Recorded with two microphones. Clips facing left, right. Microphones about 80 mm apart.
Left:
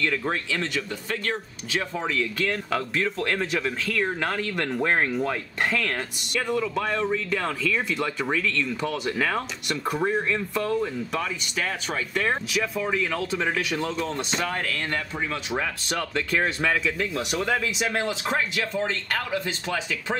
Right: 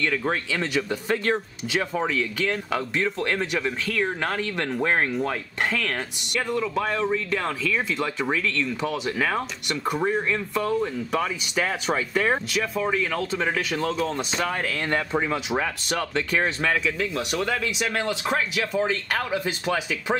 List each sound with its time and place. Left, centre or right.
0.0 s speech: centre
1.0 s speech: right
1.7 s speech: centre
14.9 s speech: right
15.9 s speech: centre
19.4 s speech: centre